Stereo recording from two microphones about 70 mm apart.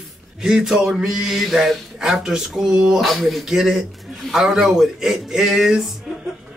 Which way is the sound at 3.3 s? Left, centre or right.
Centre.